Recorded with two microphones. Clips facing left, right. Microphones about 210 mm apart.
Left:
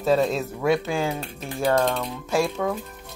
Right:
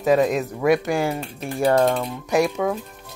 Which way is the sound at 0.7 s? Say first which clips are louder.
Right 3 dB; 15° right (ahead or behind).